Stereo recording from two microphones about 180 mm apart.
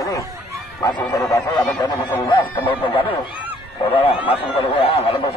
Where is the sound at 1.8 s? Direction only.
25° left (ahead or behind).